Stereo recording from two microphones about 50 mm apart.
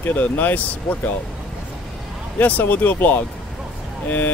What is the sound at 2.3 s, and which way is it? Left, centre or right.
Speech, left.